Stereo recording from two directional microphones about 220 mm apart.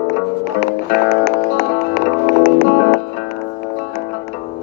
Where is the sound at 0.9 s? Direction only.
45° left (ahead or behind).